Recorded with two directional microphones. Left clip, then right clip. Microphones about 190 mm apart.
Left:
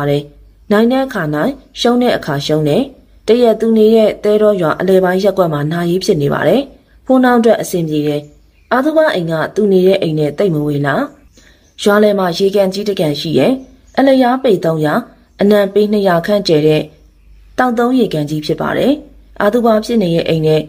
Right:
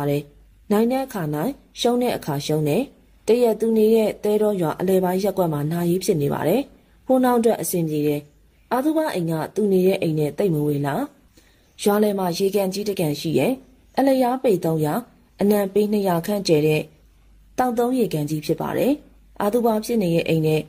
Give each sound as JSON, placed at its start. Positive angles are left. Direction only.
{"t": 0.0, "sound": "speech", "side_deg": -45}